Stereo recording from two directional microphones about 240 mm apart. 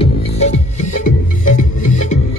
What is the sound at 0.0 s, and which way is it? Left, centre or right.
Music, left.